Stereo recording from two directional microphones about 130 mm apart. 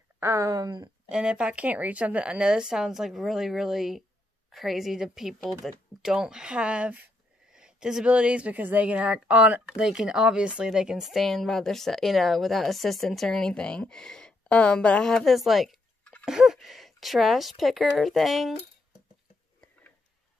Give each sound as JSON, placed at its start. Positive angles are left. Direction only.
{"t": 0.2, "sound": "speech", "side_deg": -25}
{"t": 1.0, "sound": "speech", "side_deg": -10}
{"t": 16.3, "sound": "speech", "side_deg": -5}